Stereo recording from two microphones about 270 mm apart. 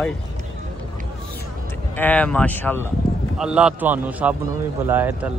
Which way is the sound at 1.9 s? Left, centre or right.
Centre.